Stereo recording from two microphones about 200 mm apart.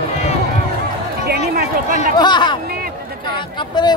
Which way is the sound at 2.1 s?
20° left (ahead or behind).